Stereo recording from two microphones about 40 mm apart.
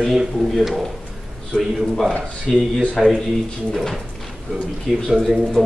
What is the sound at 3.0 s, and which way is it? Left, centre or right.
Speech, centre.